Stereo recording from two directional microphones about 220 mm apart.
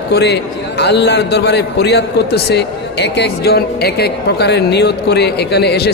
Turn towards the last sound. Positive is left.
turn(degrees=50)  # may be behind; listen again after turning